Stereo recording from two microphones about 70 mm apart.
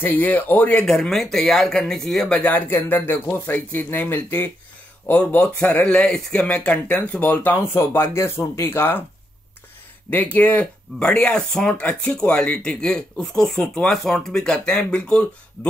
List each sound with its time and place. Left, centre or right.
0.0 s speech: left
0.8 s speech: centre
2.7 s speech: left
5.4 s speech: centre
10.0 s speech: left